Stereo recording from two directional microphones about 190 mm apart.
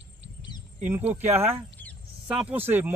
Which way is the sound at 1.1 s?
10° right (ahead or behind).